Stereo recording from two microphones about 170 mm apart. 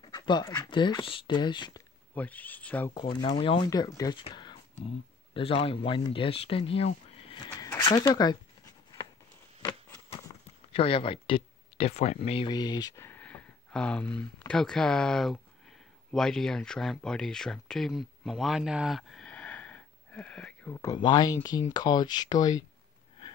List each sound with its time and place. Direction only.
0.0 s speech: 25° left (ahead or behind)
2.1 s speech: 10° left (ahead or behind)
2.9 s speech: 25° left (ahead or behind)
7.6 s speech: 25° left (ahead or behind)
10.7 s speech: 35° left (ahead or behind)